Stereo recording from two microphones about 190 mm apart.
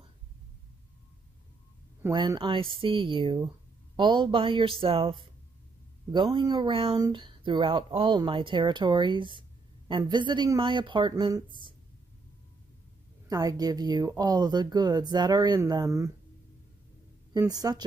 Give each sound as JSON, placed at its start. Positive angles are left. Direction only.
{"t": 2.0, "sound": "speech", "side_deg": -25}
{"t": 13.3, "sound": "speech", "side_deg": -20}
{"t": 17.3, "sound": "speech", "side_deg": -20}